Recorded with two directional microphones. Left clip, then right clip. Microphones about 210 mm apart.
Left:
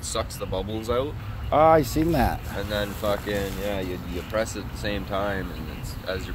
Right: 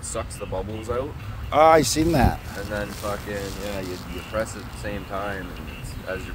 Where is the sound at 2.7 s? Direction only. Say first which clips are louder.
Left 3 dB; 40° left (ahead or behind).